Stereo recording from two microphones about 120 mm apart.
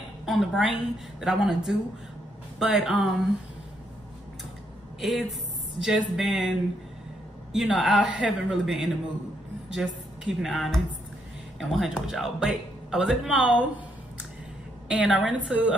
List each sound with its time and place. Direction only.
0.2 s a woman's voice: centre (ahead or behind)
5.0 s speech: centre (ahead or behind)
7.5 s a woman's voice: centre (ahead or behind)
14.9 s speech: 5° right (ahead or behind)